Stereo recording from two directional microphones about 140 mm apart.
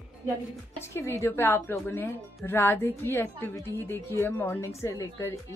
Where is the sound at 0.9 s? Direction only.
20° left (ahead or behind).